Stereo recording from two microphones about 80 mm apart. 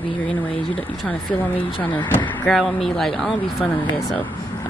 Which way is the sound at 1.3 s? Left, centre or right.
Left.